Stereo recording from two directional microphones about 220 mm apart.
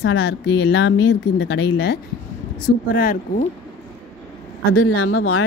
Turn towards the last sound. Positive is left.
turn(degrees=75)  # may be behind; listen again after turning